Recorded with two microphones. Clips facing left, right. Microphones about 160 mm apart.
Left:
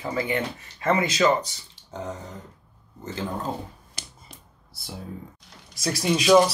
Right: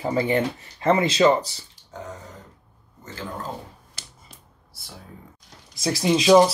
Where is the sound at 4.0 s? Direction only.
15° left (ahead or behind).